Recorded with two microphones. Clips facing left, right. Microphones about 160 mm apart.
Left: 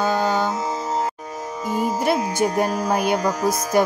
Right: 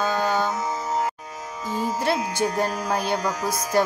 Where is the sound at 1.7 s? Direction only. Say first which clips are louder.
Left 3 dB; 15° left (ahead or behind).